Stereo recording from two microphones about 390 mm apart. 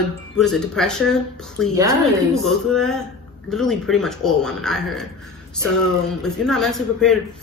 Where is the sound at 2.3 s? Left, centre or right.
Centre.